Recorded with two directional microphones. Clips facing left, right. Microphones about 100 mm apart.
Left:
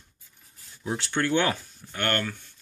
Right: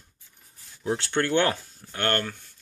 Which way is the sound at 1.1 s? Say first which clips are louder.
Right 1 dB; 35° right (ahead or behind).